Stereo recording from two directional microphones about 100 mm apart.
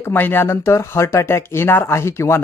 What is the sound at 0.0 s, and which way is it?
Speech, 20° left (ahead or behind).